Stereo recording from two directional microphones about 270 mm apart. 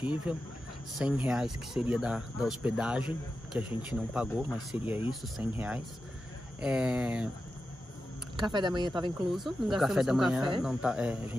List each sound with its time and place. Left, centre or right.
0.0 s speech: centre
8.4 s speech: centre
9.3 s speech: centre